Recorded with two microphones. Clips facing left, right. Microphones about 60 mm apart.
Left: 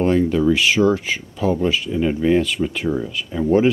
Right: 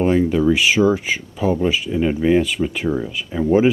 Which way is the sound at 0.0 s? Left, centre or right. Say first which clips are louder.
Right 1 dB; centre.